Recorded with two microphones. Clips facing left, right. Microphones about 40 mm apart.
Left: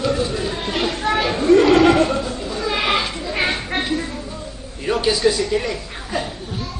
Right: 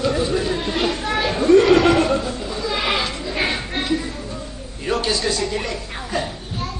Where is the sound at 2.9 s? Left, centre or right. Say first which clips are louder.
Left 2 dB; centre.